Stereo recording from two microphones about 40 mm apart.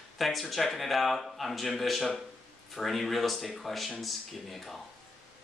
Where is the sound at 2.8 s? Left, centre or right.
Centre.